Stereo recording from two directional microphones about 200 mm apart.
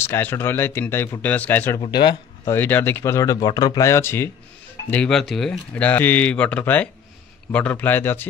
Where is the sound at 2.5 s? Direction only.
10° left (ahead or behind).